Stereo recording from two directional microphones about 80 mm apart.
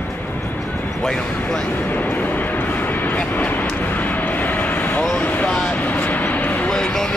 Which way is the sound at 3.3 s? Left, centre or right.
Left.